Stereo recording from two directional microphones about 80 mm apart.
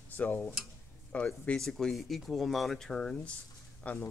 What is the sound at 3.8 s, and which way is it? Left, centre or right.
Speech, centre.